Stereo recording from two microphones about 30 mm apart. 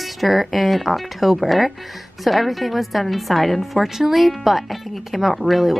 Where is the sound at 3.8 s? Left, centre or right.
Centre.